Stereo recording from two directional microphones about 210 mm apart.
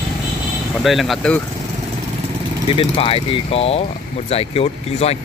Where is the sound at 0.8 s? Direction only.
Centre (ahead or behind).